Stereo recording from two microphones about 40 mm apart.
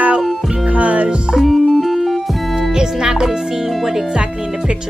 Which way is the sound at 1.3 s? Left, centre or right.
Centre.